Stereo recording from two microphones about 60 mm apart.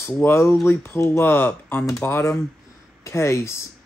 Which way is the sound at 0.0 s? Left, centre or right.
Left.